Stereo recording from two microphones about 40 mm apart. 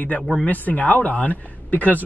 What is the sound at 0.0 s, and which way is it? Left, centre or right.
Speech, left.